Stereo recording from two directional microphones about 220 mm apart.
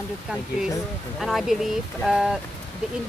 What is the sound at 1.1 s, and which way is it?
Speech, centre (ahead or behind).